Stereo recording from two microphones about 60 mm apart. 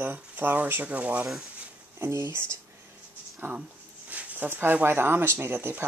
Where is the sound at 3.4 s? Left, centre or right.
Right.